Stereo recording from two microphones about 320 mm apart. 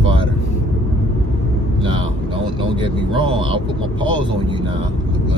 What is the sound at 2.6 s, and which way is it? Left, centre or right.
Vehicle, centre.